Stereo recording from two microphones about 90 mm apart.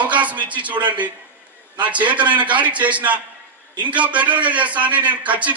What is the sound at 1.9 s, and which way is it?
A man's voice, 15° right (ahead or behind).